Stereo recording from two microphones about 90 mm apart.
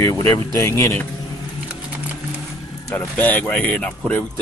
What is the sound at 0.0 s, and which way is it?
Speech, 35° left (ahead or behind).